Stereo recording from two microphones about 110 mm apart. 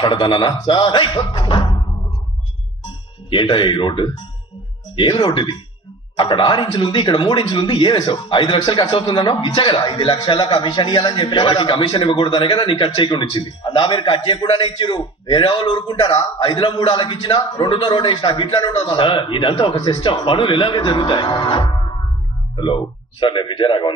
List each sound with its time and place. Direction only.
0.0 s a man's voice: 45° left (ahead or behind)
3.3 s a man's voice: 50° left (ahead or behind)
23.2 s a man's voice: 50° left (ahead or behind)